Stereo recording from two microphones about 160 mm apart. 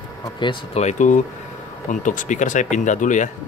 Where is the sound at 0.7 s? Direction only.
50° left (ahead or behind).